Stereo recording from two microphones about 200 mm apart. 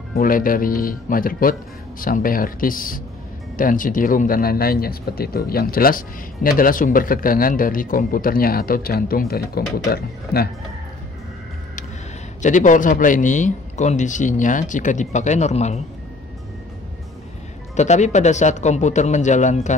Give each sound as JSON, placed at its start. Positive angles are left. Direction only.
{"t": 0.1, "sound": "speech", "side_deg": 45}
{"t": 12.4, "sound": "a man's voice", "side_deg": 40}
{"t": 17.7, "sound": "a man's voice", "side_deg": 35}